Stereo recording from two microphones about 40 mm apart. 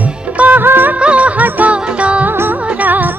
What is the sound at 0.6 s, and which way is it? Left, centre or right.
Music of bollywood, right.